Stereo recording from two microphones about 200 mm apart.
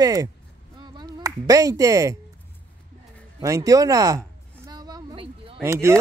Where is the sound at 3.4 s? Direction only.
15° right (ahead or behind).